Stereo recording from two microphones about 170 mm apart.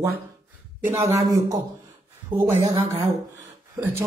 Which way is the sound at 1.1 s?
20° right (ahead or behind).